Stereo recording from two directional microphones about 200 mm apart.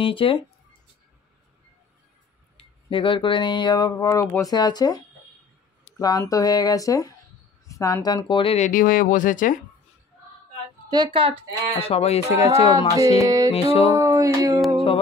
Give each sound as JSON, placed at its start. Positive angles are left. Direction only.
{"t": 0.0, "sound": "speech", "side_deg": 25}
{"t": 2.5, "sound": "speech", "side_deg": 25}
{"t": 11.1, "sound": "speech", "side_deg": -25}
{"t": 11.7, "sound": "speech", "side_deg": 30}
{"t": 13.2, "sound": "music", "side_deg": -15}
{"t": 13.5, "sound": "speech", "side_deg": 30}
{"t": 13.9, "sound": "a sound", "side_deg": -15}